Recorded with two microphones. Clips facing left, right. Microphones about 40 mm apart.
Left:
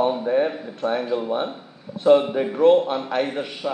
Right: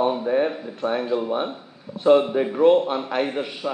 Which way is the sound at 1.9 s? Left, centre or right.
Right.